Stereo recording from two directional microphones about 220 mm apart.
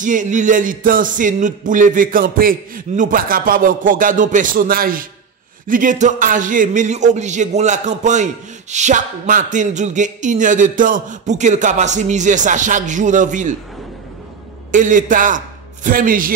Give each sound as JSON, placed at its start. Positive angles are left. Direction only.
{"t": 0.0, "sound": "a man's voice", "side_deg": -35}
{"t": 14.7, "sound": "a man's voice", "side_deg": -35}